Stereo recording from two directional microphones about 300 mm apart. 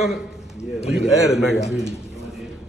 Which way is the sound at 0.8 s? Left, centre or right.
Centre.